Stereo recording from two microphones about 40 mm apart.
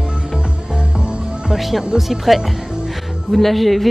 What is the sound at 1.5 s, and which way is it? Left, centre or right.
Speech, centre.